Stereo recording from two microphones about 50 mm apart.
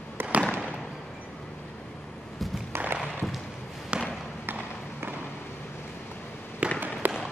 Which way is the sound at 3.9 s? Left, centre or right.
Right.